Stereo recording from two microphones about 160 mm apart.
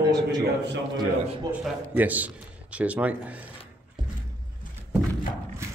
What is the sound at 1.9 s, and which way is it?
A man's voice, 10° right (ahead or behind).